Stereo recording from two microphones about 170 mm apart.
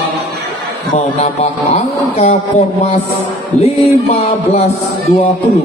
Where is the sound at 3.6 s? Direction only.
40° left (ahead or behind).